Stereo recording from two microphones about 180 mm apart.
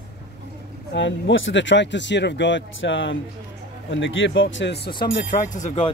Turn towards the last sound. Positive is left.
turn(degrees=45)  # may be behind; listen again after turning